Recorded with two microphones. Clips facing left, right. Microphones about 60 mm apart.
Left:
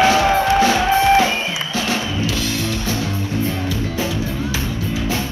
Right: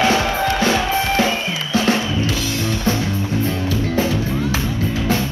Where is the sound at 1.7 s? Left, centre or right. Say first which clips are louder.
Right 5 dB; right.